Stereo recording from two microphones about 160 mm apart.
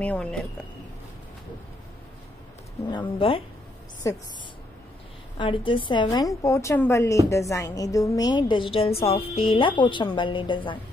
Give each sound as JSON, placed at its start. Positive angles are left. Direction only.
{"t": 0.0, "sound": "speech", "side_deg": 5}
{"t": 2.9, "sound": "speech", "side_deg": 30}
{"t": 4.0, "sound": "a woman's voice", "side_deg": 20}
{"t": 5.4, "sound": "a woman's voice", "side_deg": 30}